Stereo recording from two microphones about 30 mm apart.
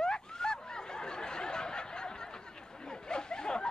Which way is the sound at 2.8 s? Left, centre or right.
Left.